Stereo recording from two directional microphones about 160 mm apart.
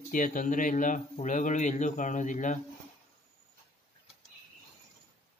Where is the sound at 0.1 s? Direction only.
55° left (ahead or behind).